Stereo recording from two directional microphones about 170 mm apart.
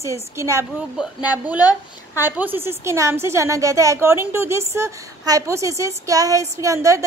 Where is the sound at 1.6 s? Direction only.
20° left (ahead or behind).